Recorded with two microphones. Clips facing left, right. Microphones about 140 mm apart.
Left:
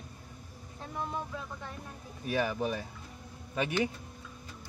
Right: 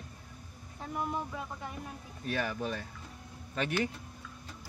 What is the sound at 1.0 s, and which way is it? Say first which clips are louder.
Speech: right 1 dB; 10° right (ahead or behind).